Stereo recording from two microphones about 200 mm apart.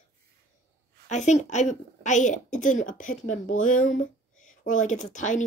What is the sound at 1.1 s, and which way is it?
A woman's voice, 35° left (ahead or behind).